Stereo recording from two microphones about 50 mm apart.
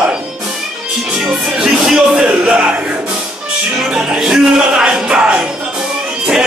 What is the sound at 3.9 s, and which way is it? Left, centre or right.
Music, centre.